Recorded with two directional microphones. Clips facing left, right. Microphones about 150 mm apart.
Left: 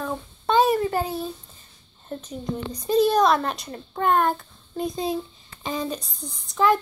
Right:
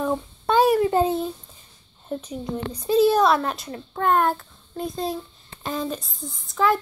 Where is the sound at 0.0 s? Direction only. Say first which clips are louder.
Right 4 dB; 15° right (ahead or behind).